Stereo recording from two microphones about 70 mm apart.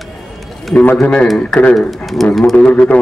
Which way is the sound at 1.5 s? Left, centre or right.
Centre.